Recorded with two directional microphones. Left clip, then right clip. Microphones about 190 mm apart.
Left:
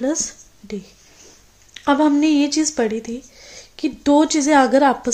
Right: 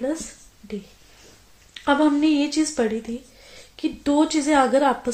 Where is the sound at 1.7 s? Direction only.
35° left (ahead or behind).